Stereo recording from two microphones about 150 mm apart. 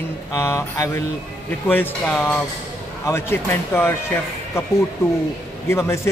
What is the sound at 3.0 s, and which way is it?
Speech, 15° left (ahead or behind).